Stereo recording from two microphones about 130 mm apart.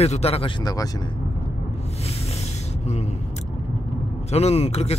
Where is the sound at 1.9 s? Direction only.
50° left (ahead or behind).